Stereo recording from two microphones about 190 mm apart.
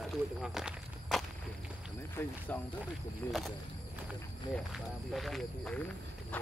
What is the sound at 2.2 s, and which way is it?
Speech, 10° left (ahead or behind).